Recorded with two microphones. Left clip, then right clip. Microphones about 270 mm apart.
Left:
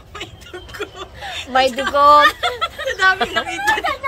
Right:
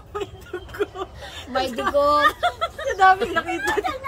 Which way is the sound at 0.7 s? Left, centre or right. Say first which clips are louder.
Right 2 dB; right.